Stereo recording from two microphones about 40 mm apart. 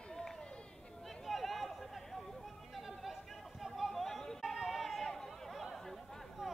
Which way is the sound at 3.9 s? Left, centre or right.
Centre.